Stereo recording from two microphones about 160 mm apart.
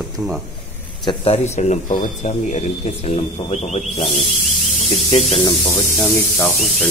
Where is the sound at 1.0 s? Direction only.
35° left (ahead or behind).